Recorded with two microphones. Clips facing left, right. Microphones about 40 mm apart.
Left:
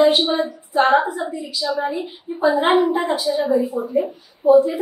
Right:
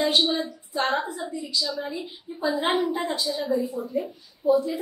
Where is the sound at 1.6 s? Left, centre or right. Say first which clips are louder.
Left 10 dB; left.